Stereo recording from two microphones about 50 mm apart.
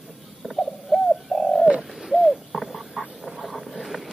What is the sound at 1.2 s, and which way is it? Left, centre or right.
Bird, centre.